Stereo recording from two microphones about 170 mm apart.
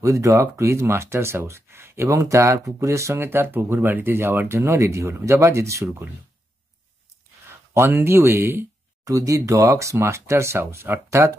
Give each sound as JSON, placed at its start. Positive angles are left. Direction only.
{"t": 0.0, "sound": "speech", "side_deg": -20}
{"t": 7.7, "sound": "speech", "side_deg": -15}